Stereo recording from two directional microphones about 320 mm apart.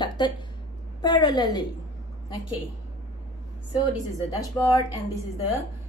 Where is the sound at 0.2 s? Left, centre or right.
Centre.